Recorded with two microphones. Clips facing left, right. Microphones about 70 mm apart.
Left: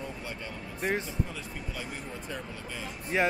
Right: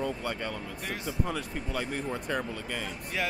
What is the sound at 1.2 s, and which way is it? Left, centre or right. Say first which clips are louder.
Speech: right 5 dB; right.